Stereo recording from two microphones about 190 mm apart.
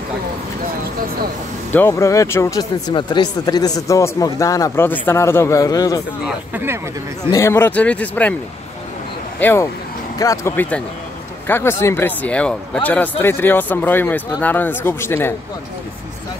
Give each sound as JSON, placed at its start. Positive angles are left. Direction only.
{"t": 1.7, "sound": "speech", "side_deg": 10}
{"t": 6.2, "sound": "speech", "side_deg": -10}
{"t": 7.2, "sound": "speech", "side_deg": 15}
{"t": 9.4, "sound": "speech", "side_deg": 10}